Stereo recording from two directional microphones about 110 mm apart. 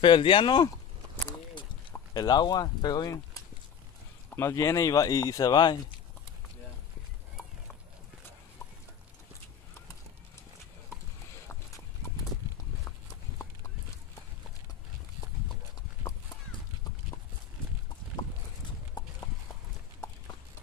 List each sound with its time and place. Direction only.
0.0 s speech: 50° left (ahead or behind)
2.1 s speech: 40° left (ahead or behind)
12.8 s clip-clop: 30° left (ahead or behind)